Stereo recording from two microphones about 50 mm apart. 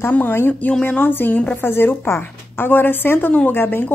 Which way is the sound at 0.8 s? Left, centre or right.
Left.